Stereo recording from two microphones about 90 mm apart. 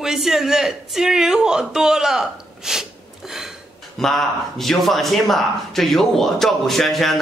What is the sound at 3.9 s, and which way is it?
A man's voice, 5° left (ahead or behind).